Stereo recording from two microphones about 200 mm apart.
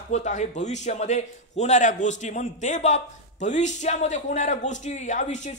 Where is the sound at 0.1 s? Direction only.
35° left (ahead or behind).